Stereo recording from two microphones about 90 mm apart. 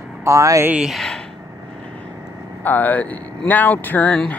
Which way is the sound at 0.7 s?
5° right (ahead or behind).